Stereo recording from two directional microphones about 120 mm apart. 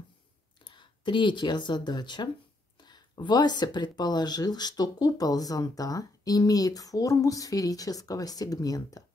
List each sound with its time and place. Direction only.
0.7 s speech: 40° left (ahead or behind)